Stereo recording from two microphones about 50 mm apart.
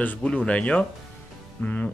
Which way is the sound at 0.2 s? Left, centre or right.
Left.